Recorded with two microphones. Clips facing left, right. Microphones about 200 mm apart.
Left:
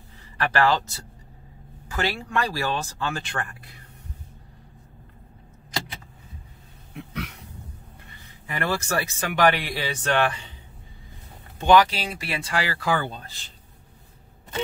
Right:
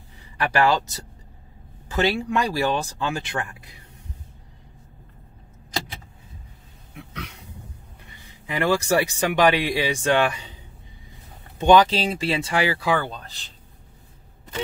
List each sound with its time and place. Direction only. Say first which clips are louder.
0.4 s speech: right 1 dB; 15° right (ahead or behind)
8.5 s speech: right 6 dB; 15° right (ahead or behind)
11.5 s speech: right 2 dB; 20° right (ahead or behind)